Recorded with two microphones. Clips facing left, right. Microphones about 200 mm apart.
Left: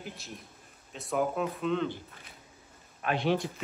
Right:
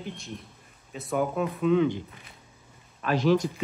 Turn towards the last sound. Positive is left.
turn(degrees=-40)  # may be behind; listen again after turning